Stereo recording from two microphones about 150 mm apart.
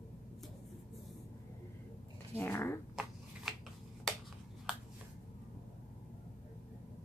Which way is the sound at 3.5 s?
Centre (ahead or behind).